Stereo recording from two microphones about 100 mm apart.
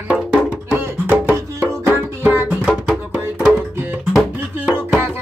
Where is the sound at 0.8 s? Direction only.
20° right (ahead or behind).